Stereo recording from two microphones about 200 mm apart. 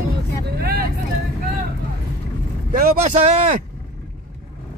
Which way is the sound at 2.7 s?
40° right (ahead or behind).